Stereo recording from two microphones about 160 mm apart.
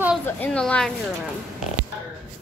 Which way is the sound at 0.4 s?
5° left (ahead or behind).